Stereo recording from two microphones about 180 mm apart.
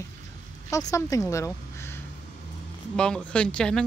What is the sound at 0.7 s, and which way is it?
Speech, 15° left (ahead or behind).